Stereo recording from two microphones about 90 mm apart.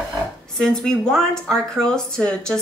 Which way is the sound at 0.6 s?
5° left (ahead or behind).